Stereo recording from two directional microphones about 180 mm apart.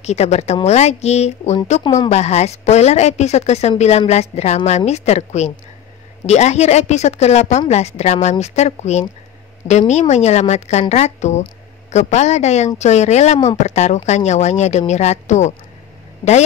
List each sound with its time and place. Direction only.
0.0 s a woman's voice: 40° left (ahead or behind)